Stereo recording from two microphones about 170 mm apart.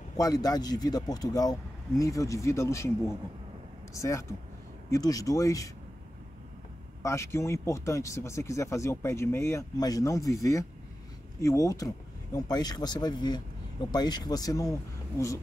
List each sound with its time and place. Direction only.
0.2 s speech: 20° left (ahead or behind)
7.0 s speech: 15° left (ahead or behind)